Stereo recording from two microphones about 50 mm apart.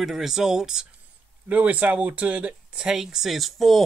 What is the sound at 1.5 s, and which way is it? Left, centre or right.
Speech, right.